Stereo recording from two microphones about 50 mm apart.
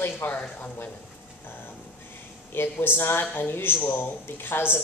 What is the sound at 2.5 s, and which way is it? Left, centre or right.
Speech, left.